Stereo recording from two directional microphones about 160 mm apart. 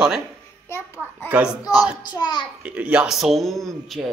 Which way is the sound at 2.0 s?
25° left (ahead or behind).